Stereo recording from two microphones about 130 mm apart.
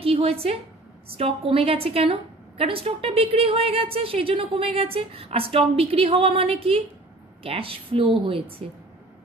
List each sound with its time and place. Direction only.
0.0 s a woman's voice: 45° right (ahead or behind)